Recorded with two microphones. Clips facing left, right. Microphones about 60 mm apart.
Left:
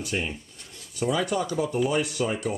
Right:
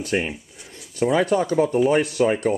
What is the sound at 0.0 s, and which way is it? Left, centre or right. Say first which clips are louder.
Speech: right 6 dB; right.